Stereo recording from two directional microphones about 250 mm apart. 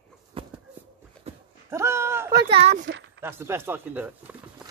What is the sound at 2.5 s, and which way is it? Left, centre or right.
Speech, right.